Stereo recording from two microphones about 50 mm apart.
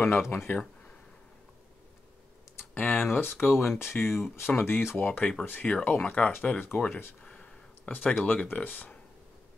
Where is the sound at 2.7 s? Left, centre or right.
Left.